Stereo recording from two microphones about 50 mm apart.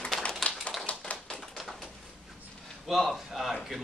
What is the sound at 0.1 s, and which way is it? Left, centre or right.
Tap, centre.